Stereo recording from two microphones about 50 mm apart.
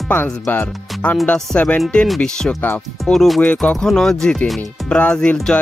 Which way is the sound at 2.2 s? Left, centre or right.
Centre.